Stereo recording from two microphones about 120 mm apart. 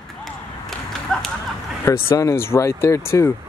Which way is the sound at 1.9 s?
25° left (ahead or behind).